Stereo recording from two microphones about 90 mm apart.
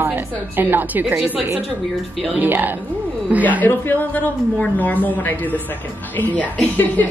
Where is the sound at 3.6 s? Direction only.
20° left (ahead or behind).